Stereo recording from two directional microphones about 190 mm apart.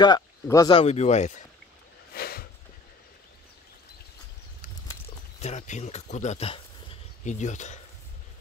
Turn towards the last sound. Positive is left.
turn(degrees=40)  # may be behind; listen again after turning